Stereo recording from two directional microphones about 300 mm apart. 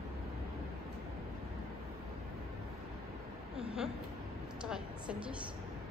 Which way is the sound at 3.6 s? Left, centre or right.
Centre.